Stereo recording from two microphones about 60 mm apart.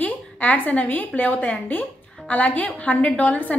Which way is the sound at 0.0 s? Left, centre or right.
Left.